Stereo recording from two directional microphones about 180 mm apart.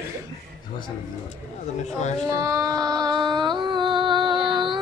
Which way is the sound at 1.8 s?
40° left (ahead or behind).